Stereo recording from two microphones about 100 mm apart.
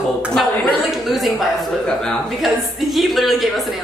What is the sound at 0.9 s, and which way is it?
Speech, centre (ahead or behind).